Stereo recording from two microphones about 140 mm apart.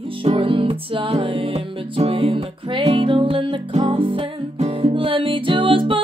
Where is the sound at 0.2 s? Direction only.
40° right (ahead or behind).